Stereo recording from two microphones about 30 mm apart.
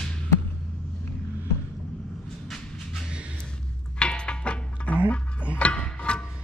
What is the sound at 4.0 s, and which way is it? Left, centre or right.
Music, left.